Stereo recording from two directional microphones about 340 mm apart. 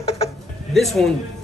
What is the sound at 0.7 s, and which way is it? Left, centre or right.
Speech, centre.